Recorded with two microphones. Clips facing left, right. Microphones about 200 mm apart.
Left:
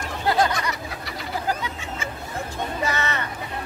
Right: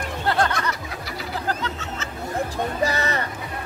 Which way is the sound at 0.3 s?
10° left (ahead or behind).